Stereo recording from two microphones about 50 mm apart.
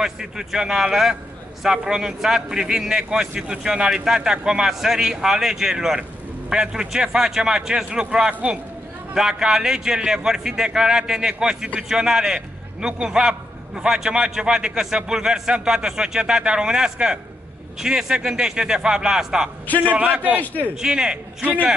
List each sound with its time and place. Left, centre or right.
0.0 s a man's voice: centre
8.3 s a man's voice: right
9.1 s a man's voice: centre
19.9 s a man's voice: right
20.8 s a man's voice: centre